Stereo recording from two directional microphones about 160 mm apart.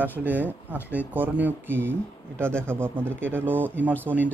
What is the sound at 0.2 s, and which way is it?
Speech, 10° right (ahead or behind).